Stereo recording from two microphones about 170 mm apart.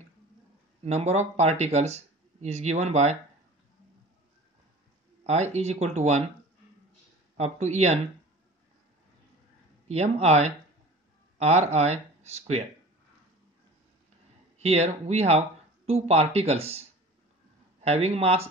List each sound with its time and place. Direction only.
0.8 s speech: 40° right (ahead or behind)
5.2 s speech: 40° right (ahead or behind)
7.3 s speech: 40° right (ahead or behind)
9.8 s speech: 40° right (ahead or behind)
14.6 s speech: 40° right (ahead or behind)
17.8 s speech: 40° right (ahead or behind)